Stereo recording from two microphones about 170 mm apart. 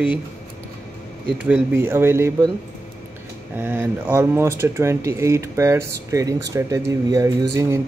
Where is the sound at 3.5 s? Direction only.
10° right (ahead or behind).